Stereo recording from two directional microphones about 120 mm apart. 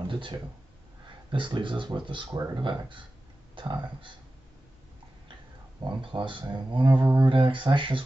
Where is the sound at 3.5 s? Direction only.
40° right (ahead or behind).